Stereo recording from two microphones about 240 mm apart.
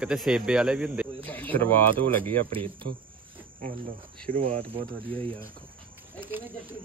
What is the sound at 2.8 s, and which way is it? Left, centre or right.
Cricket, right.